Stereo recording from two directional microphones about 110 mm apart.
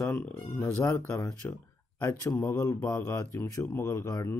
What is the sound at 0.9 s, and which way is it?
Mantra, 20° left (ahead or behind).